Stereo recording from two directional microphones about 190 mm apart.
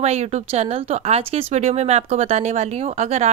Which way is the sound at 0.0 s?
35° right (ahead or behind).